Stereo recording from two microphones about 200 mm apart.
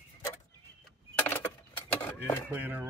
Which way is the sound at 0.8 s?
10° left (ahead or behind).